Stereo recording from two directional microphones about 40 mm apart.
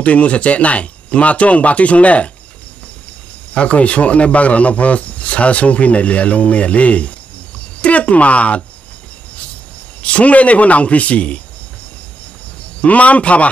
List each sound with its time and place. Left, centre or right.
0.0 s speech: left
3.5 s speech: left
10.0 s speech: left
12.8 s speech: left